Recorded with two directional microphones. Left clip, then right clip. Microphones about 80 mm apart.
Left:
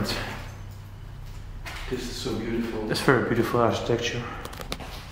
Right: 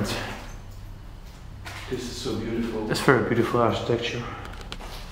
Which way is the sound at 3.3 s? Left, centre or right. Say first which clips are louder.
Right 1 dB; centre.